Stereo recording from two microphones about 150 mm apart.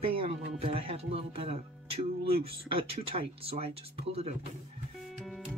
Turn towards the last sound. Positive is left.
turn(degrees=0)  # may be behind; listen again after turning